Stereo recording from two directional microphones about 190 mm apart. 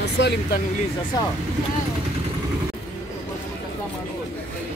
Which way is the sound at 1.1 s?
20° left (ahead or behind).